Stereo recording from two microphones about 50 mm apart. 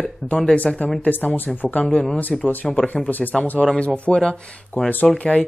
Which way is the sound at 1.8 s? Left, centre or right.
Centre.